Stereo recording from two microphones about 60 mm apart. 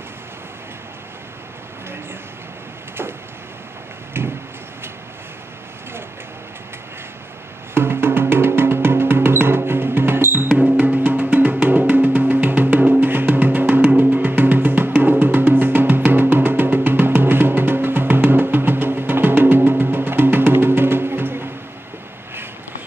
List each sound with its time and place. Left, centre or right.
4.1 s a sound: right
7.7 s music: right
10.6 s music: right